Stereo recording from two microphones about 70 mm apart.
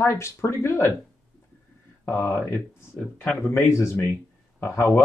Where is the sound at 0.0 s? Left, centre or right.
Left.